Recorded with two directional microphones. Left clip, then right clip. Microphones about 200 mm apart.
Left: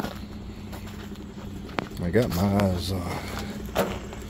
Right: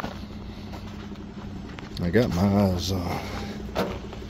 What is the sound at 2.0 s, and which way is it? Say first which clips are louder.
Speech: right 2 dB; 15° right (ahead or behind).